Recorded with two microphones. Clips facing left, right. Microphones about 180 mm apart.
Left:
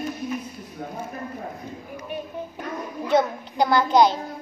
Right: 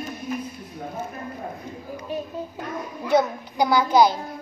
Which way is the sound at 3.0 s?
10° right (ahead or behind).